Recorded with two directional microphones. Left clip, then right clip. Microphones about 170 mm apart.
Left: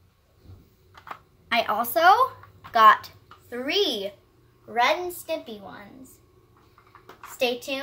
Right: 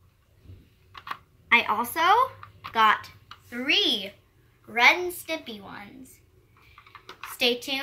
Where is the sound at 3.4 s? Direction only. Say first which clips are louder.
Right 1 dB; 40° left (ahead or behind).